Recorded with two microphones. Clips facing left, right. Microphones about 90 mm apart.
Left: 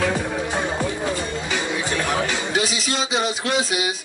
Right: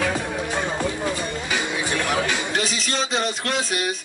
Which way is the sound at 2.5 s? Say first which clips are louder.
Left 2 dB; 5° left (ahead or behind).